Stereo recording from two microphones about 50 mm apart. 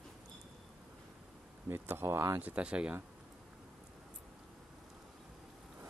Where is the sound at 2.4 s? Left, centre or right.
Right.